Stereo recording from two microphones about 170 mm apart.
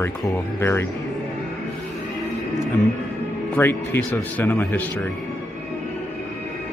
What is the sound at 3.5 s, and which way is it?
A man's voice, 10° left (ahead or behind).